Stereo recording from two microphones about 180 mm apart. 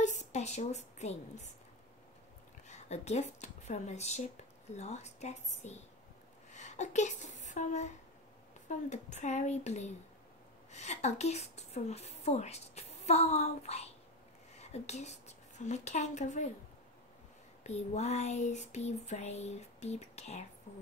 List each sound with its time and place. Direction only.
0.0 s speech: 40° left (ahead or behind)
2.7 s a woman's voice: 40° left (ahead or behind)
17.6 s a woman's voice: 40° left (ahead or behind)